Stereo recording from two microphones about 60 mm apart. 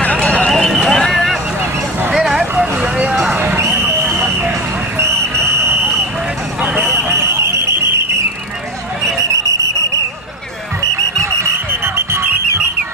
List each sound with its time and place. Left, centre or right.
0.5 s vehicle: centre
3.0 s a sound: centre
4.9 s vehicle: right
7.1 s fire alarm: right
10.8 s music: right